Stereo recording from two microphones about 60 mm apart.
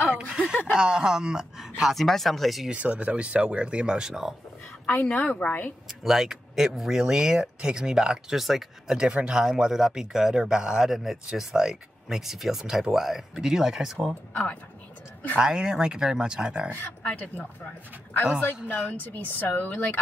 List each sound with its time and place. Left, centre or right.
0.7 s speech: centre
2.7 s speech: right
4.8 s speech: centre
5.2 s a woman's voice: left
6.0 s speech: centre
14.3 s speech: centre
15.3 s speech: centre
17.0 s a woman's voice: centre
18.4 s a woman's voice: left